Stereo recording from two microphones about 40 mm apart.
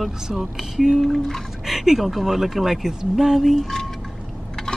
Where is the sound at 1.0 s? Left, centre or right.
Centre.